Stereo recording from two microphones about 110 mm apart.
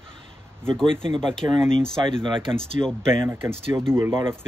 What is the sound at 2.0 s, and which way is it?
Speech, 50° right (ahead or behind).